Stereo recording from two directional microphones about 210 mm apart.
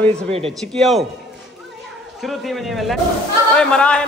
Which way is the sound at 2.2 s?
Centre (ahead or behind).